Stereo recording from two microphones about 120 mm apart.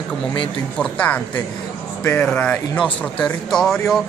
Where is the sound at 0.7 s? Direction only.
10° left (ahead or behind).